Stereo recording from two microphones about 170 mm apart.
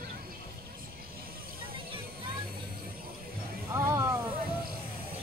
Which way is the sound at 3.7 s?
15° right (ahead or behind).